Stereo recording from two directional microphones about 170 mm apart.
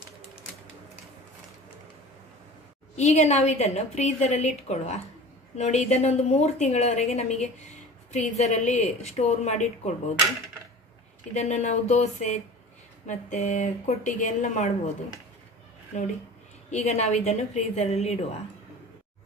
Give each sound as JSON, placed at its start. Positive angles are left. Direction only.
{"t": 3.0, "sound": "a woman's voice", "side_deg": 45}
{"t": 11.3, "sound": "a woman's voice", "side_deg": 40}
{"t": 15.9, "sound": "a woman's voice", "side_deg": 45}